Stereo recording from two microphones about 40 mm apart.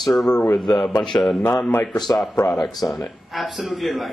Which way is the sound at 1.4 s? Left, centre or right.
Left.